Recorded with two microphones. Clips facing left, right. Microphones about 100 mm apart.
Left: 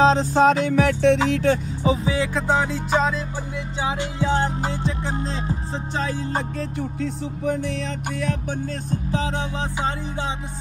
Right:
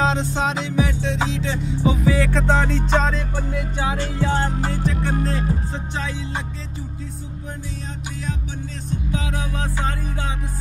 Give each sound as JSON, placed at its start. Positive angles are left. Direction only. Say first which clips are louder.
{"t": 0.0, "sound": "music", "louder": "left 5 dB", "side_deg": 35}
{"t": 1.8, "sound": "music", "louder": "right 2 dB", "side_deg": 30}
{"t": 2.1, "sound": "music", "louder": "right 1 dB", "side_deg": 15}
{"t": 8.9, "sound": "music", "louder": "left 1 dB", "side_deg": 35}